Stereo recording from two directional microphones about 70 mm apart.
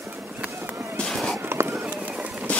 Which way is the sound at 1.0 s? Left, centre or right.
Centre.